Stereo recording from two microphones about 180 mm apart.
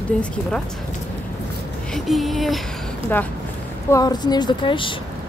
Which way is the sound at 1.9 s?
Centre (ahead or behind).